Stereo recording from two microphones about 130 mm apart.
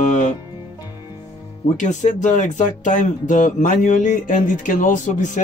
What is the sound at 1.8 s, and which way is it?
Speech, 70° left (ahead or behind).